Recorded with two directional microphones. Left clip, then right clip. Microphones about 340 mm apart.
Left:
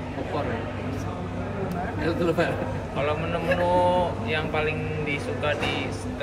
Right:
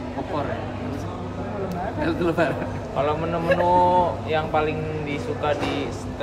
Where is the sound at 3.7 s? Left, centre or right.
Centre.